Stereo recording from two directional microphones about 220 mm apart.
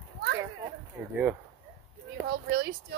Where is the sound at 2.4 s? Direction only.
45° right (ahead or behind).